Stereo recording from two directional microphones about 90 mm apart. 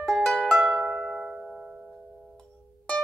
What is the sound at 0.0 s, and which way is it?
Music, 5° left (ahead or behind).